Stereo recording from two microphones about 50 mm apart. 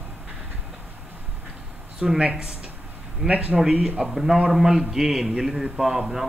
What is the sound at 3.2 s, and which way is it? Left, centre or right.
Speech, right.